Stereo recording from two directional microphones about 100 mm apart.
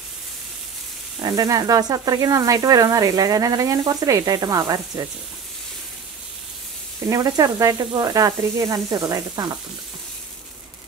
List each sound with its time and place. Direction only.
1.2 s speech: 40° right (ahead or behind)
7.1 s speech: 35° right (ahead or behind)